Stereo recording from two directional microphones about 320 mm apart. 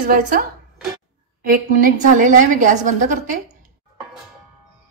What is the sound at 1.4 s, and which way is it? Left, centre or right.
A woman's voice, right.